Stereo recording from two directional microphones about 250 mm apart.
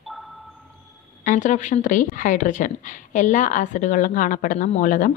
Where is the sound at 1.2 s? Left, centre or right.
Left.